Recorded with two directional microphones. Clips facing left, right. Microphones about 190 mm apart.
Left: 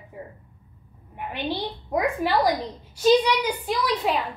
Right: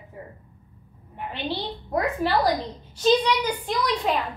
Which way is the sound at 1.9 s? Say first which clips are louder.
Even; 10° left (ahead or behind).